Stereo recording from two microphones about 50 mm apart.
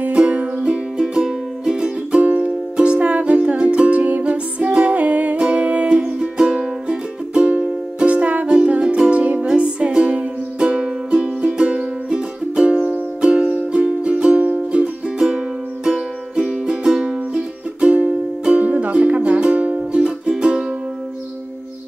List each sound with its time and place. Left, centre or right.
0.1 s music: right
0.6 s music: centre
7.5 s music: right
20.0 s music: centre